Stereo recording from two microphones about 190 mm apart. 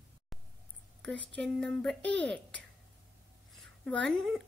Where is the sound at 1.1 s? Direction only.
70° right (ahead or behind).